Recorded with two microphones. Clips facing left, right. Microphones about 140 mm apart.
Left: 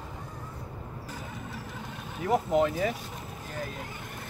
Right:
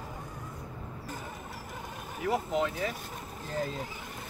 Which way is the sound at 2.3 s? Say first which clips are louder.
Left 6 dB; 50° left (ahead or behind).